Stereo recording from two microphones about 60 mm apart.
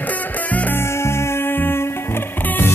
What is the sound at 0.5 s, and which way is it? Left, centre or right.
Music, left.